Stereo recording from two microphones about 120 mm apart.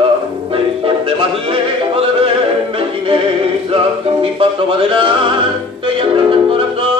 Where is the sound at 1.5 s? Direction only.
50° right (ahead or behind).